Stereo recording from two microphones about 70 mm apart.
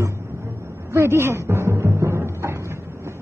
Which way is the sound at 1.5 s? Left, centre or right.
Right.